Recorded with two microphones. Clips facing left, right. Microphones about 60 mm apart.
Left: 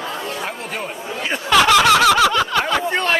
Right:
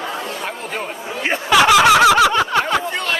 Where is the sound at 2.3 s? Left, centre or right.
Right.